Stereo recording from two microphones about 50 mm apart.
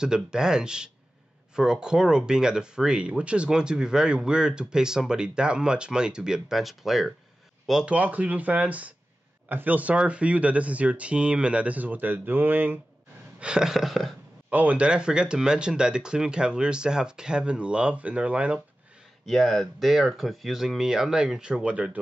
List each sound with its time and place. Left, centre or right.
0.0 s speech: centre
6.6 s speech: centre
7.8 s speech: right
13.4 s speech: centre
14.5 s speech: right
19.2 s speech: centre; by 22.0 s right